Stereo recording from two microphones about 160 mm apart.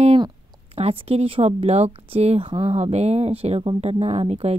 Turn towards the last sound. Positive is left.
turn(degrees=-40)  # may be behind; listen again after turning